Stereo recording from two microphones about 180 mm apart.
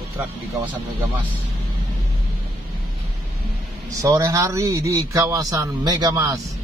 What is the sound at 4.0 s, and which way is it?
A man's voice, 15° right (ahead or behind).